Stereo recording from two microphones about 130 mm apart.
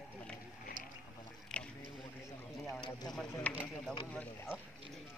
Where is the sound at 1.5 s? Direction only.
10° left (ahead or behind).